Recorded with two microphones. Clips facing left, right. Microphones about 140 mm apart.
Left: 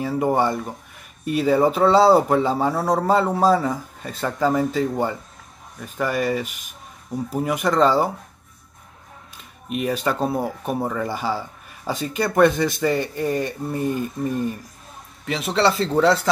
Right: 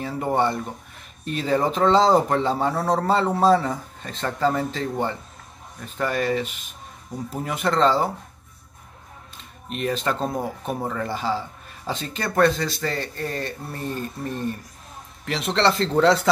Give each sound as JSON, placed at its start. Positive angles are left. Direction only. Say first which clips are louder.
{"t": 0.0, "sound": "speech", "louder": "left 3 dB", "side_deg": 10}
{"t": 9.7, "sound": "speech", "louder": "left 2 dB", "side_deg": 5}